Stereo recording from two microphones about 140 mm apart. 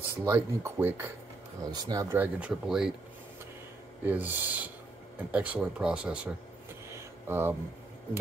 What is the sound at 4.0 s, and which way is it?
Speech, 15° right (ahead or behind).